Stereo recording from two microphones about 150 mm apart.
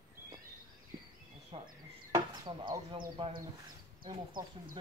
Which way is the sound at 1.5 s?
40° right (ahead or behind).